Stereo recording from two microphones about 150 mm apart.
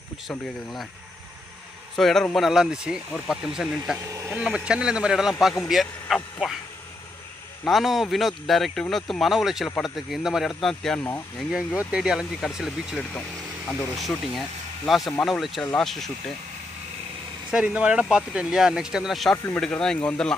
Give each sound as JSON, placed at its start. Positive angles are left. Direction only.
{"t": 2.0, "sound": "speech", "side_deg": 0}
{"t": 4.1, "sound": "speech", "side_deg": -20}
{"t": 4.4, "sound": "speech", "side_deg": -5}
{"t": 7.6, "sound": "speech", "side_deg": 0}
{"t": 17.5, "sound": "speech", "side_deg": -5}
{"t": 19.3, "sound": "speech", "side_deg": 15}
{"t": 19.6, "sound": "speech", "side_deg": 5}